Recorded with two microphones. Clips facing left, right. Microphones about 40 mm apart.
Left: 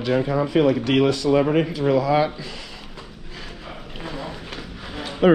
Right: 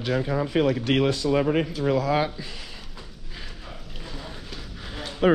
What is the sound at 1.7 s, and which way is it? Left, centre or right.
Speech, left.